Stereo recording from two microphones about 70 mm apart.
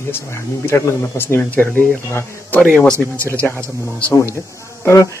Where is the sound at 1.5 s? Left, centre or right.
Left.